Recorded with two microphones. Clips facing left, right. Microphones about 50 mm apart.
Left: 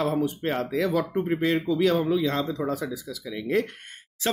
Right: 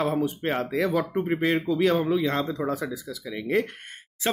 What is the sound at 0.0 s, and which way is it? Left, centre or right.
Speech, right.